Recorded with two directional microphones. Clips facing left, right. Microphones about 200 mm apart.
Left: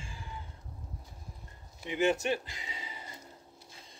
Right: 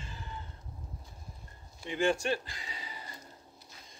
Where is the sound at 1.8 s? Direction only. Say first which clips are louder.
Left 1 dB; 20° left (ahead or behind).